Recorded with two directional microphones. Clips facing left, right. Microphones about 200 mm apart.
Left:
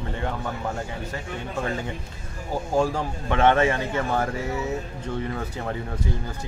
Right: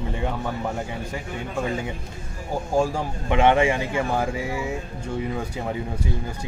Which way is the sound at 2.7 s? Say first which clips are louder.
Right 1 dB; 10° right (ahead or behind).